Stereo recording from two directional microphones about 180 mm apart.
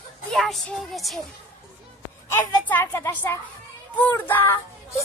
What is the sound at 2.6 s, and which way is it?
A child's voice, 10° left (ahead or behind).